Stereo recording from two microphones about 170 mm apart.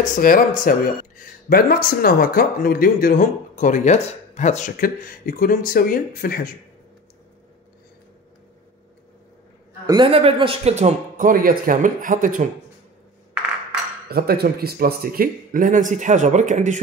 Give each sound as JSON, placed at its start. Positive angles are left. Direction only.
{"t": 0.1, "sound": "speech", "side_deg": 55}
{"t": 9.8, "sound": "speech", "side_deg": -30}
{"t": 14.0, "sound": "speech", "side_deg": -65}